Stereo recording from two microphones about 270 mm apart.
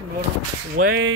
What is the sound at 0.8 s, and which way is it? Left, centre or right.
Speech, right.